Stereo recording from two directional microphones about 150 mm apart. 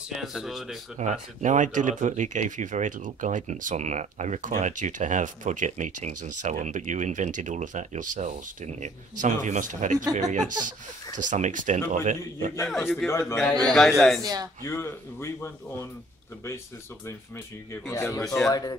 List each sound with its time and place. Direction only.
0.2 s speech: centre (ahead or behind)
0.9 s speech: 55° right (ahead or behind)
12.6 s speech: centre (ahead or behind)
13.0 s speech: 20° left (ahead or behind)
13.7 s speech: centre (ahead or behind)
14.2 s speech: 25° right (ahead or behind)
14.6 s speech: 15° left (ahead or behind)
17.8 s a man's voice: 20° left (ahead or behind)
18.2 s speech: 5° left (ahead or behind)
18.5 s a man's voice: 25° left (ahead or behind)